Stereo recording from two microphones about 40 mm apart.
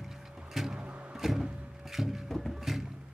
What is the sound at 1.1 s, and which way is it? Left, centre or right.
Music, centre.